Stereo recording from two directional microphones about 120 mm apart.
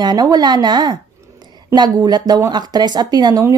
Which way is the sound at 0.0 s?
35° right (ahead or behind).